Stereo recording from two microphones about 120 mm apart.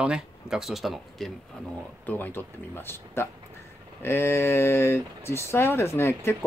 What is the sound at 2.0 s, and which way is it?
Speech, 15° left (ahead or behind).